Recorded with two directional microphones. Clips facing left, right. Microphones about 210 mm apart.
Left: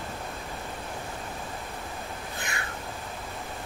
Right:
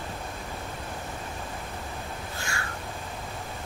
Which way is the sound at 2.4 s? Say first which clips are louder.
Even; 20° left (ahead or behind).